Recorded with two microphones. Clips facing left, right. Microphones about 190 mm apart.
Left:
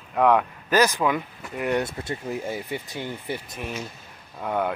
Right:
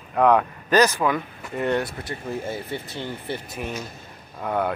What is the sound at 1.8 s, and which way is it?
Speech, 25° left (ahead or behind).